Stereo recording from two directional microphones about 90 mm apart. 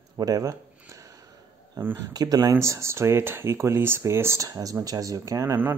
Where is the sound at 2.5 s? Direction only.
30° right (ahead or behind).